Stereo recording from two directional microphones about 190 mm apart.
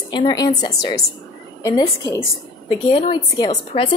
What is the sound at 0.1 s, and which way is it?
A woman's voice, 25° left (ahead or behind).